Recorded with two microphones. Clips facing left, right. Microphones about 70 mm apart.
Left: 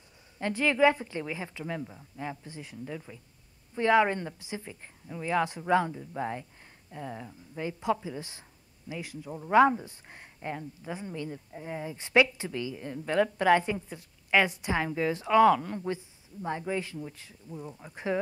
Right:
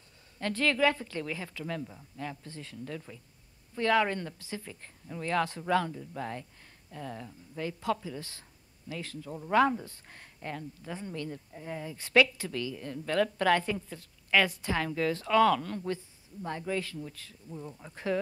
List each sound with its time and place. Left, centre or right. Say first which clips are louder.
0.4 s speech: left 3 dB; centre